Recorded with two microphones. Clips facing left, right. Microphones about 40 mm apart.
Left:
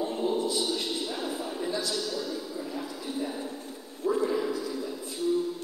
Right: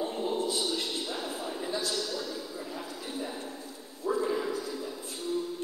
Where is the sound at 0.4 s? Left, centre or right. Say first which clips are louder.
Left 2 dB; right.